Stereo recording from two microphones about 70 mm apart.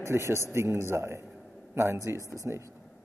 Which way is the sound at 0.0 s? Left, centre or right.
Right.